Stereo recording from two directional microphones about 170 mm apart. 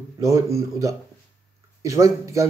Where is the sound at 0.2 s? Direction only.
20° right (ahead or behind).